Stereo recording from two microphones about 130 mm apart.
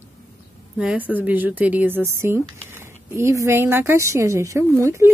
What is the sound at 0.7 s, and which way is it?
A woman's voice, 5° right (ahead or behind).